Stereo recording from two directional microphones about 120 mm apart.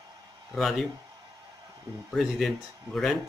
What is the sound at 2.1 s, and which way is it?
Speech, centre (ahead or behind).